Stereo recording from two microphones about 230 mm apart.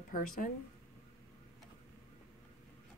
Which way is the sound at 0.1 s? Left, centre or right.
Left.